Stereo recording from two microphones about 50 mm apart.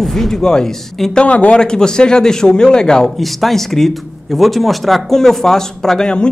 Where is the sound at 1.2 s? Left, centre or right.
Left.